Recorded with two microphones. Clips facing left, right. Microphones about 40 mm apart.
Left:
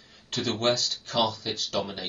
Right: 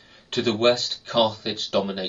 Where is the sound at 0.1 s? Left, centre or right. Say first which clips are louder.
Right 6 dB; right.